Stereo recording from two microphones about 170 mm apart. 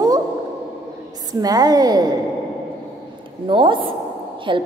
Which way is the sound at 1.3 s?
20° right (ahead or behind).